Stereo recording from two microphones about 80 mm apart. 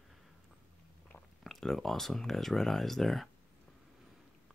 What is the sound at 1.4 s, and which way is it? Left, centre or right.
Speech, centre.